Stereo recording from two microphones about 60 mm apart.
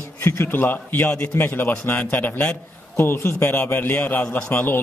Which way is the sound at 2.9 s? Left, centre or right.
Left.